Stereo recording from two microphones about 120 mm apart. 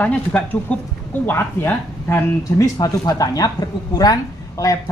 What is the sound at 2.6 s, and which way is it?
Speech, 30° left (ahead or behind).